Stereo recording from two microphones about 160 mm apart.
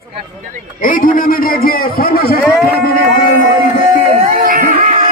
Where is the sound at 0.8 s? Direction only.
60° left (ahead or behind).